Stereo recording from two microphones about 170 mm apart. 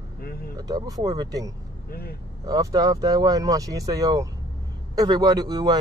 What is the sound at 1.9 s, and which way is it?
Speech, 65° left (ahead or behind).